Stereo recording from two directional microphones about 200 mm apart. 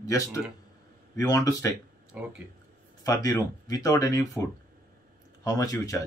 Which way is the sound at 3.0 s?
20° left (ahead or behind).